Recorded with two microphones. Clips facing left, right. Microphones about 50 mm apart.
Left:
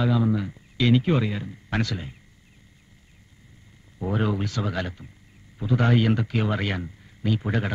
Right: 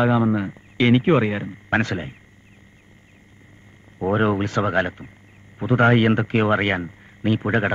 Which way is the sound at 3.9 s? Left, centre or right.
Right.